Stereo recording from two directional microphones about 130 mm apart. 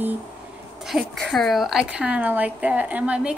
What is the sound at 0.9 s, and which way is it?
A woman's voice, centre (ahead or behind).